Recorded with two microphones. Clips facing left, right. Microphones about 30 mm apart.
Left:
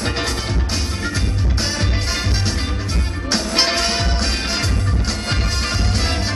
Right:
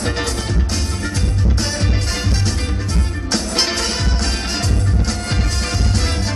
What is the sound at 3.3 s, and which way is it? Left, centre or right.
Music, centre.